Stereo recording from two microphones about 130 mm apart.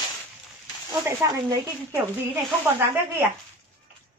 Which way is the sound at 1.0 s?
25° right (ahead or behind).